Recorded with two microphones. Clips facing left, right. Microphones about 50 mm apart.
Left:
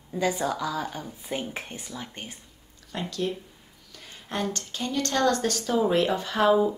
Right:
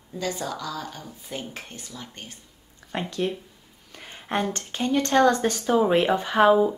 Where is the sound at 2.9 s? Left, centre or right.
Right.